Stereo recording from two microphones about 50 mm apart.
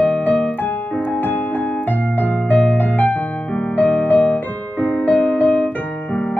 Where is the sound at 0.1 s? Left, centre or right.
Left.